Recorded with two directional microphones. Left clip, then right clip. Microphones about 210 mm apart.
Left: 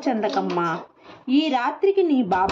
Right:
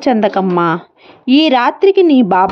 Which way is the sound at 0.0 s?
40° right (ahead or behind).